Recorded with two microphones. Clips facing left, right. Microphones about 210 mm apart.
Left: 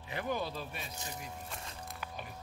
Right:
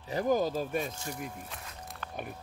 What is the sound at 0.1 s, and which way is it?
Speech, 40° right (ahead or behind).